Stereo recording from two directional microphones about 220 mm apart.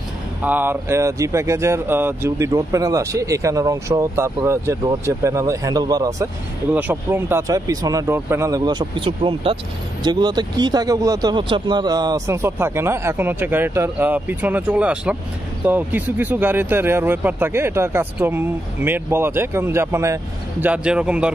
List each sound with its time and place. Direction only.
0.4 s speech: 10° right (ahead or behind)